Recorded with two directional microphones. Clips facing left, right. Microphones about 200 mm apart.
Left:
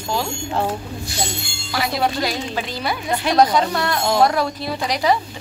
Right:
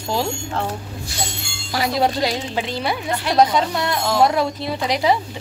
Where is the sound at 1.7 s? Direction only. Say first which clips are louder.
Right 2 dB; 35° right (ahead or behind).